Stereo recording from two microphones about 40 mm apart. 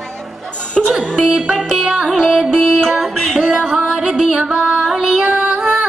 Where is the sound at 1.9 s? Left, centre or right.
Right.